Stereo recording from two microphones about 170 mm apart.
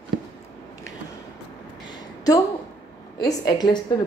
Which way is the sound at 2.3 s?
20° left (ahead or behind).